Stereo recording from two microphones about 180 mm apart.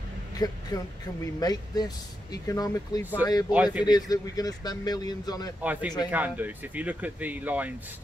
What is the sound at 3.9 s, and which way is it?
Speech, 20° left (ahead or behind).